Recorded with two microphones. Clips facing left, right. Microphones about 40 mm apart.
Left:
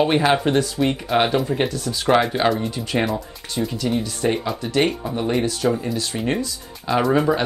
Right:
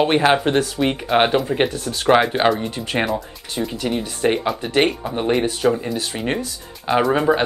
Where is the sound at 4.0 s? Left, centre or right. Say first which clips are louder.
Right 2 dB; right.